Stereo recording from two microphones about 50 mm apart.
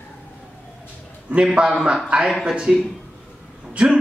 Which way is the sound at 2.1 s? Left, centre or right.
Right.